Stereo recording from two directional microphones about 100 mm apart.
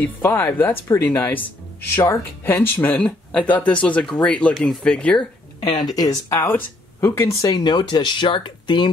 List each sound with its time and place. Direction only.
0.0 s speech: 20° left (ahead or behind)
5.8 s speech: 45° left (ahead or behind)
6.4 s speech: 20° left (ahead or behind)
7.5 s speech: 50° left (ahead or behind)